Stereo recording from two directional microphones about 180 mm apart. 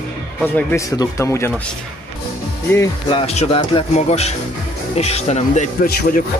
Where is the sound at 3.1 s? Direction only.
35° left (ahead or behind).